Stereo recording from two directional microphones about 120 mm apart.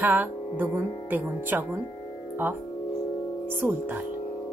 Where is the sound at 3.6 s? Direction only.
15° right (ahead or behind).